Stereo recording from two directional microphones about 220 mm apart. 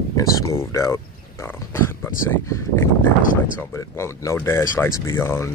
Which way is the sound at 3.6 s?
10° left (ahead or behind).